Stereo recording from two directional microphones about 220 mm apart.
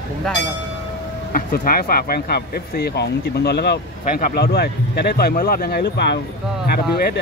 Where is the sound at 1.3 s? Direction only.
40° left (ahead or behind).